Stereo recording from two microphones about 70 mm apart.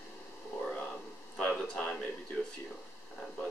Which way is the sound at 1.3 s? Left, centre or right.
Centre.